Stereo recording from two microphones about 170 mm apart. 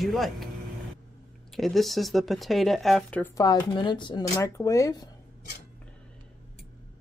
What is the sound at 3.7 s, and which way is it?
Speech, 30° left (ahead or behind).